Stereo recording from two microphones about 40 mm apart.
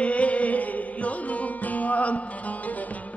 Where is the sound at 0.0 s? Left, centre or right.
Left.